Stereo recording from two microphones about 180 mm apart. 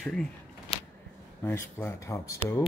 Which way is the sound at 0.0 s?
5° left (ahead or behind).